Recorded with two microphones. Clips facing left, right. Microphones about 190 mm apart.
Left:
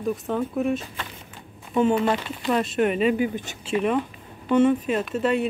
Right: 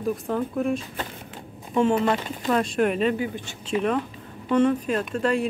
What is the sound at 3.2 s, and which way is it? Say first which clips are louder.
Speech: left 4 dB; 20° left (ahead or behind).